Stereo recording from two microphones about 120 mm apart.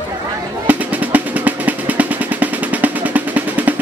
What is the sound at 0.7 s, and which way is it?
Drum roll, 15° right (ahead or behind).